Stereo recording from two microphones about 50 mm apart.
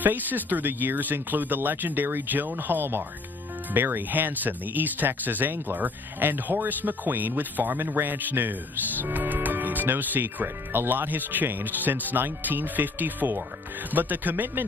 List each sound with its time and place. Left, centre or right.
0.0 s speech: right